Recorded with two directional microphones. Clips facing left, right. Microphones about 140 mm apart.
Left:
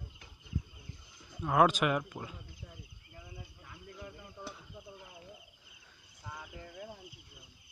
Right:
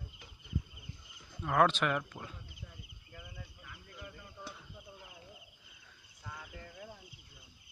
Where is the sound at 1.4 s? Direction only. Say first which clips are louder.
Left 2 dB; 10° left (ahead or behind).